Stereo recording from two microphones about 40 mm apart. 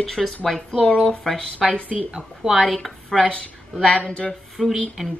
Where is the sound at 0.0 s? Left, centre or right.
Centre.